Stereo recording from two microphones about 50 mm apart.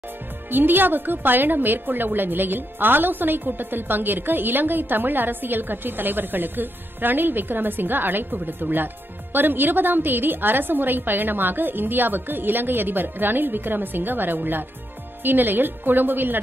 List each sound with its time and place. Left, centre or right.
0.5 s a woman's voice: right